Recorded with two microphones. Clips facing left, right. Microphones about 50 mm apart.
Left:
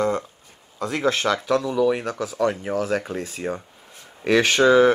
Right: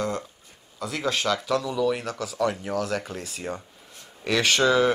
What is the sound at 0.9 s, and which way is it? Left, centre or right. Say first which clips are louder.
Speech: left 4 dB; left.